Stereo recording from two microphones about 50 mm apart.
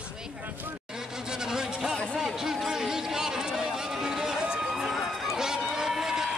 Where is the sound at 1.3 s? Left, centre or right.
Centre.